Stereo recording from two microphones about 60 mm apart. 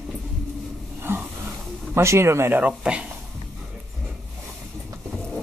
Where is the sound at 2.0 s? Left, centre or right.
Right.